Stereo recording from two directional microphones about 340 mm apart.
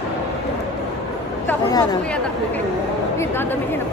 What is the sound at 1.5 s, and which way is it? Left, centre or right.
A woman's voice, centre.